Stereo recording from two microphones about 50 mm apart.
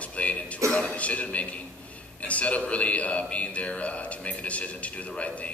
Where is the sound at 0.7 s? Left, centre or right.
Left.